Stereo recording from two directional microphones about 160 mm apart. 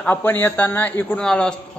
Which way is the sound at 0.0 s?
10° left (ahead or behind).